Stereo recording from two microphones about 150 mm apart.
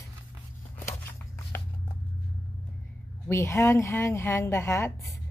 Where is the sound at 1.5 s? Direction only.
15° left (ahead or behind).